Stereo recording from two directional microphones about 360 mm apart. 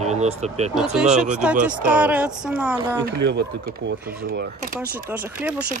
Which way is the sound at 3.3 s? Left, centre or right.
Right.